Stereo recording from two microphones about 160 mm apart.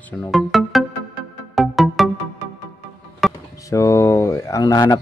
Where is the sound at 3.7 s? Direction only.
20° left (ahead or behind).